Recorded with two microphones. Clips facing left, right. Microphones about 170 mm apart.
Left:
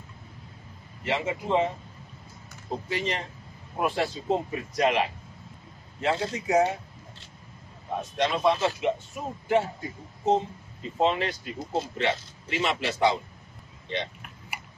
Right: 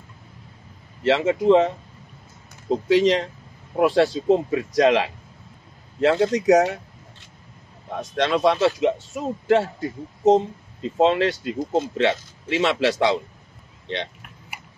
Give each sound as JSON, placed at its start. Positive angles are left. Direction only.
{"t": 1.0, "sound": "a man's voice", "side_deg": -90}
{"t": 2.9, "sound": "a man's voice", "side_deg": -90}
{"t": 8.0, "sound": "a man's voice", "side_deg": -90}